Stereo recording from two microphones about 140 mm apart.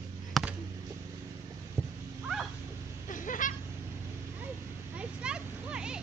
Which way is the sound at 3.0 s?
70° left (ahead or behind).